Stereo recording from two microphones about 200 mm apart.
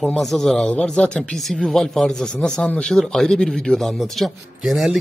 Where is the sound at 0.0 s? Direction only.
Centre (ahead or behind).